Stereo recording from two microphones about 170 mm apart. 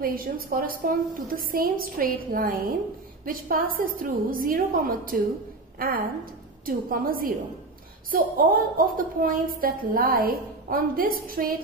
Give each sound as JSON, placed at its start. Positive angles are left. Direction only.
{"t": 0.0, "sound": "a woman's voice", "side_deg": -60}